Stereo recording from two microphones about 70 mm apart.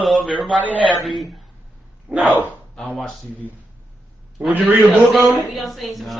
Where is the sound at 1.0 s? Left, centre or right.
Centre.